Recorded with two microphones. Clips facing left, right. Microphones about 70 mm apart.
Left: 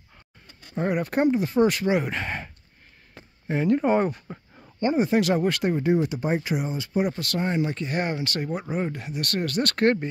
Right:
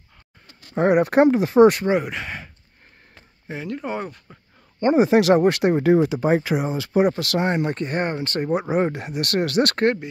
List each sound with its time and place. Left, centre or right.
0.7 s speech: right
2.0 s speech: centre
4.9 s speech: right
8.5 s speech: right